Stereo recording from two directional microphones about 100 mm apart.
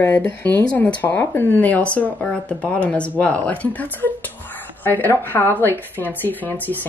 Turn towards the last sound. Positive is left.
turn(degrees=20)  # may be behind; listen again after turning